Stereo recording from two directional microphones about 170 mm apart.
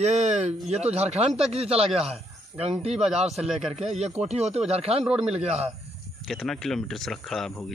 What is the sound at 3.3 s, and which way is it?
Speech, 40° right (ahead or behind).